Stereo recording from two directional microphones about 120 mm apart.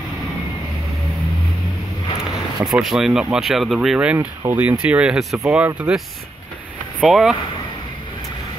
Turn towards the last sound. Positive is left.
turn(degrees=-5)  # may be behind; listen again after turning